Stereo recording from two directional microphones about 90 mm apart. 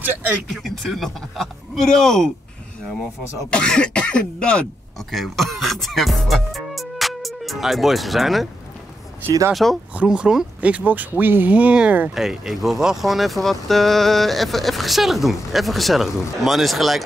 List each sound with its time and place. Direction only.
0.5 s speech: centre (ahead or behind)
3.5 s speech: 10° left (ahead or behind)
5.1 s speech: centre (ahead or behind)
9.5 s speech: centre (ahead or behind)
9.9 s speech: 10° right (ahead or behind)
12.1 s speech: 5° right (ahead or behind)